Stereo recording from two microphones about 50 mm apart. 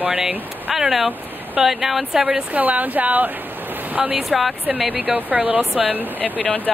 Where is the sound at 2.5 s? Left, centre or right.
Right.